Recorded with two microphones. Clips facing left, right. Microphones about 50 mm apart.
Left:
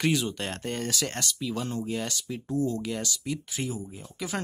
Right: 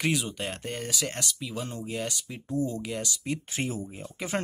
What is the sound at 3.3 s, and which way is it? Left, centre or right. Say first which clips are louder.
Speech: right 3 dB; right.